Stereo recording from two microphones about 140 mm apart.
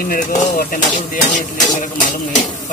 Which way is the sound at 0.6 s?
80° left.